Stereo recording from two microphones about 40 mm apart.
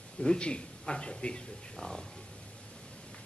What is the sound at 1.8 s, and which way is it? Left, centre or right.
Speech, centre.